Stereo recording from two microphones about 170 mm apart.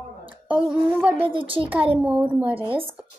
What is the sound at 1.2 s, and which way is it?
Speech, 30° right (ahead or behind).